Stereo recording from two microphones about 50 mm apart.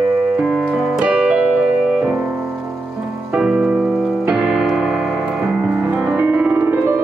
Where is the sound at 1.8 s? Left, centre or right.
Centre.